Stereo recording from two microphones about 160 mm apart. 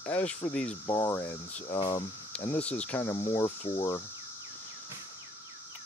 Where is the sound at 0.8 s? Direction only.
25° left (ahead or behind).